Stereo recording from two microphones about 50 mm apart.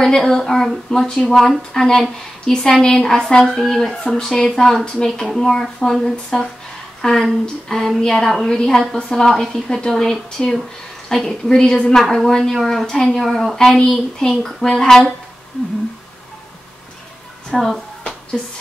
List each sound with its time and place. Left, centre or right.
0.0 s a woman's voice: centre
13.2 s a woman's voice: centre
13.7 s a woman's voice: centre
17.5 s speech: centre